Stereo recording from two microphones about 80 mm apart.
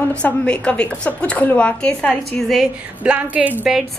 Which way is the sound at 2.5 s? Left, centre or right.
Centre.